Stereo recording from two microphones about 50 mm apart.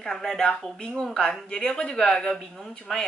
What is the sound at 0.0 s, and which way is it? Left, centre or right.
Speech, centre.